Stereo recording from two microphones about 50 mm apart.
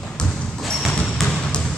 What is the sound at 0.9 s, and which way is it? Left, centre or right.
Basketball bounce, centre.